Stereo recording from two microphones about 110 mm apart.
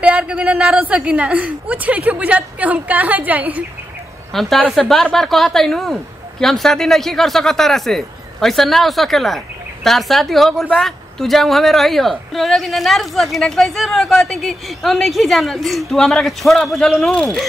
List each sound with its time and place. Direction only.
0.0 s a woman's voice: 10° right (ahead or behind)
4.3 s speech: centre (ahead or behind)